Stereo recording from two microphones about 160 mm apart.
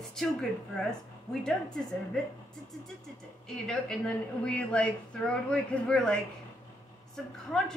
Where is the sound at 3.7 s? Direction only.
5° left (ahead or behind).